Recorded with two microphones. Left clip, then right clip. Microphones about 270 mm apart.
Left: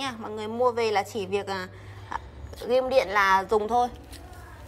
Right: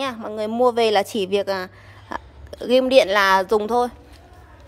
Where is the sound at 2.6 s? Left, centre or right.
Right.